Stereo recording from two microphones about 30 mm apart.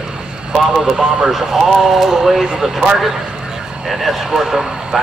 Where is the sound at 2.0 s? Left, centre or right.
Centre.